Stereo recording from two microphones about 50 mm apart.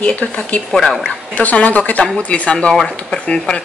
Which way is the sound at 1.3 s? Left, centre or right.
Left.